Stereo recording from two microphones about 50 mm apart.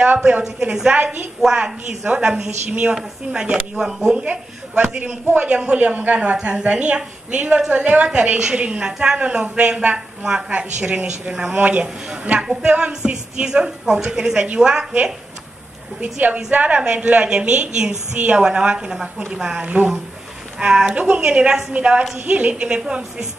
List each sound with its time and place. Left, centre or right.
0.4 s a woman's voice: centre
4.2 s a woman's voice: right
5.0 s a man's voice: right
11.8 s a woman's voice: centre
16.0 s a man's voice: right; by 19.6 s centre
19.6 s a woman's voice: right
20.5 s speech: centre
20.9 s a woman's voice: right
21.7 s a woman's voice: right